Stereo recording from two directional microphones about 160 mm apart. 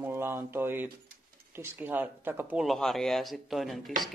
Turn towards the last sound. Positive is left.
turn(degrees=0)  # may be behind; listen again after turning